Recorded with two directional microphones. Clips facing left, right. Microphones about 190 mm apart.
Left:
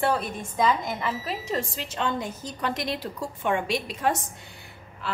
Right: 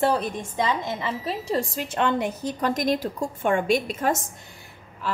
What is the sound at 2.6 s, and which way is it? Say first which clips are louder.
Speech: right 5 dB; 45° right (ahead or behind).